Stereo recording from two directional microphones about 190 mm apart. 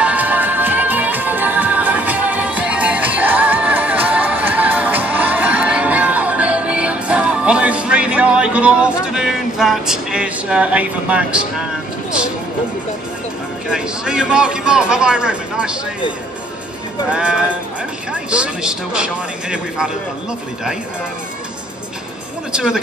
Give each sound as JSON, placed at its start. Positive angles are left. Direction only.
{"t": 0.0, "sound": "music", "side_deg": -10}
{"t": 13.7, "sound": "a man's voice", "side_deg": -5}
{"t": 17.1, "sound": "a man's voice", "side_deg": -5}
{"t": 22.5, "sound": "speech", "side_deg": -5}